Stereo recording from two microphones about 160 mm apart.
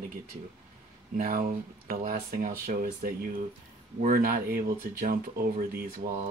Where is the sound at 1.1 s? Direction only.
60° right (ahead or behind).